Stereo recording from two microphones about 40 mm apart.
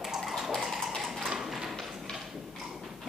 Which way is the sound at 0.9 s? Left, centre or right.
Centre.